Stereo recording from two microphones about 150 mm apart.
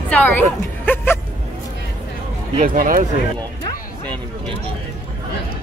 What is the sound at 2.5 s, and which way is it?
Speech, 65° right (ahead or behind).